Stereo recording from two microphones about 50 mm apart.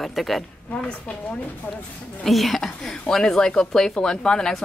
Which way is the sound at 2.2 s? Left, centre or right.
Centre.